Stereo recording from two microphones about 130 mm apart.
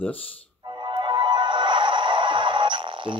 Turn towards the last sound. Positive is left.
turn(degrees=-40)  # may be behind; listen again after turning